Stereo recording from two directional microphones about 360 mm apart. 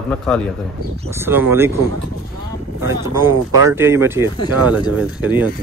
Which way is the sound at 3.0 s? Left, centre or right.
Centre.